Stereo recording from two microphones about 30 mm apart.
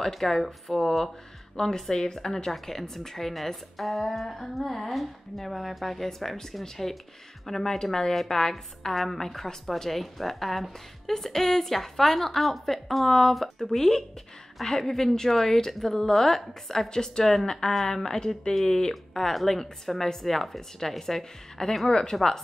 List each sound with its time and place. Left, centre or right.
0.0 s a woman's voice: centre
1.6 s a woman's voice: centre
3.7 s a sound: centre
4.9 s a woman's voice: centre
8.9 s a woman's voice: centre; by 22.1 s left